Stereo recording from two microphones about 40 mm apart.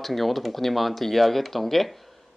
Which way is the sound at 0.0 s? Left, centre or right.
Centre.